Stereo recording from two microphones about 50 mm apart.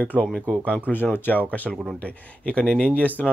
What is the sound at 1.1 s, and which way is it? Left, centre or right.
Speech, left.